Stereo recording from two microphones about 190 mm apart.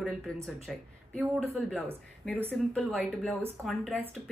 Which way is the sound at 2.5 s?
Centre (ahead or behind).